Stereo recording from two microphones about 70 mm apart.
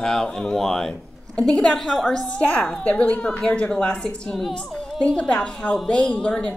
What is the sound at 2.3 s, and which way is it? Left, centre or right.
A woman's voice, centre.